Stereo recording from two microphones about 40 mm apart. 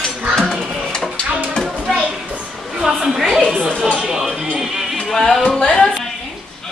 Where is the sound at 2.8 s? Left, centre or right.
Centre.